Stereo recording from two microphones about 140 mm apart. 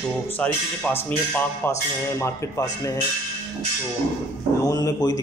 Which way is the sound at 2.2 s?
25° left (ahead or behind).